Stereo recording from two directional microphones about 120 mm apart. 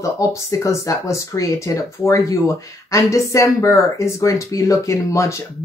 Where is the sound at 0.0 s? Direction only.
25° left (ahead or behind).